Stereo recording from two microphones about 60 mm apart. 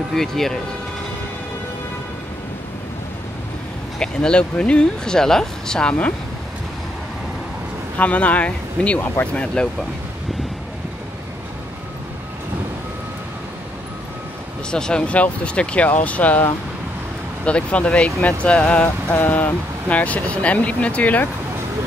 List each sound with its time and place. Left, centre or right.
0.1 s speech: centre
4.0 s speech: centre
8.0 s speech: left
14.7 s speech: centre
17.5 s speech: left
19.1 s speech: left